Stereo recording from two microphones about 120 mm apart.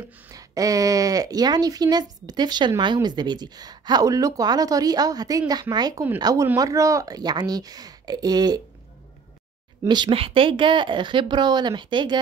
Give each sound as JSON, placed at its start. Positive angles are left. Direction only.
{"t": 0.3, "sound": "speech", "side_deg": -30}
{"t": 9.8, "sound": "speech", "side_deg": -40}